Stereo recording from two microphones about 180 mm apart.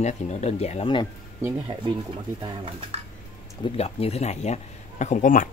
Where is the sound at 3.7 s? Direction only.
35° left (ahead or behind).